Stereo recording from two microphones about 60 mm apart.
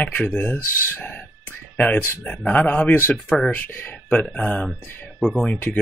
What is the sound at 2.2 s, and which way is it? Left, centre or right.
Speech, left.